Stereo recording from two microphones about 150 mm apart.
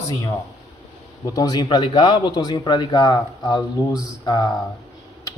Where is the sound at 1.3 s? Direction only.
25° left (ahead or behind).